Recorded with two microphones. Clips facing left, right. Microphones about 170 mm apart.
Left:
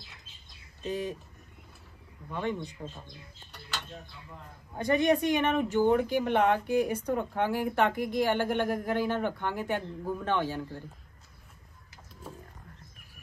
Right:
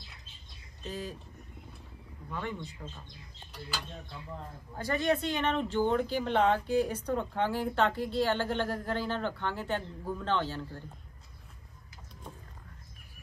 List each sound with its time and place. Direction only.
0.8 s speech: 20° left (ahead or behind)
2.3 s speech: 20° left (ahead or behind)
4.7 s speech: 20° left (ahead or behind)